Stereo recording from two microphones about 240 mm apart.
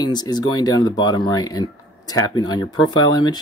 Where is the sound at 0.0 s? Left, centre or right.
Centre.